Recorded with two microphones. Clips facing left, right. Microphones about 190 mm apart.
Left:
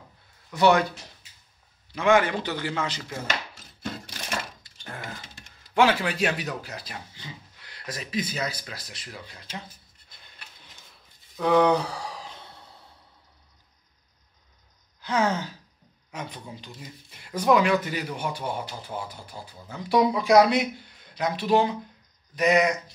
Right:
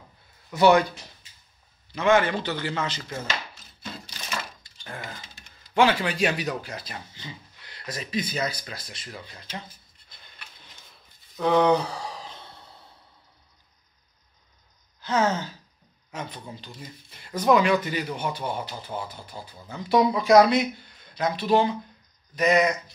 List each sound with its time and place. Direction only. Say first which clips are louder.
0.5 s speech: right 2 dB; 5° right (ahead or behind)
1.9 s speech: even; 10° left (ahead or behind)
3.8 s sewing machine: left 4 dB; 55° left (ahead or behind)
4.9 s typing: even; 5° left (ahead or behind)
5.8 s speech: even; 5° left (ahead or behind)
11.3 s a sound: even; 5° left (ahead or behind)
15.0 s speech: right 1 dB; 10° left (ahead or behind)